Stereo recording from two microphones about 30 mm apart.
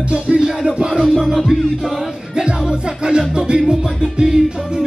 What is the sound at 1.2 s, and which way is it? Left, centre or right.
Music, centre.